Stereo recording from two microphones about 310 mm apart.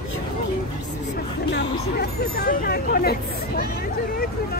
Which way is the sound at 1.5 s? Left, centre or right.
Left.